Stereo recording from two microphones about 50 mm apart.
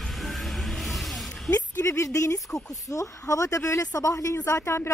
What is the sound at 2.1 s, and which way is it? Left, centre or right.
Speech, left.